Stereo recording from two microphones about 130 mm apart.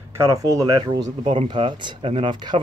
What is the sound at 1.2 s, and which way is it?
Speech, 45° right (ahead or behind).